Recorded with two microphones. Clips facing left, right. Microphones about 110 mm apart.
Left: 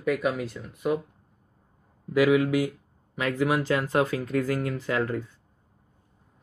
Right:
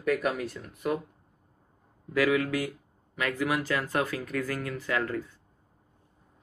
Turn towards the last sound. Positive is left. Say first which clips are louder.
# left 3 dB
turn(degrees=25)  # may be behind; listen again after turning